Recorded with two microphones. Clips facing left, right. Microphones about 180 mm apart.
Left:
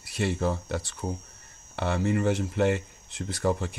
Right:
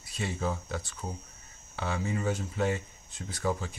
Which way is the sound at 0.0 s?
70° left (ahead or behind).